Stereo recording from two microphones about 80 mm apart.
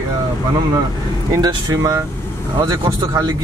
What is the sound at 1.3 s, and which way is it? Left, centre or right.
Speech, right.